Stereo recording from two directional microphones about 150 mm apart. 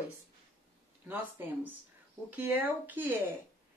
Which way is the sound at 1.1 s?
15° right (ahead or behind).